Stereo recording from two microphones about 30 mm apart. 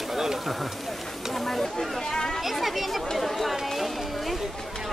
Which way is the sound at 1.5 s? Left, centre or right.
Centre.